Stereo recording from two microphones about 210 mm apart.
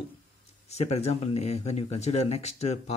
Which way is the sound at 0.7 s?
30° left (ahead or behind).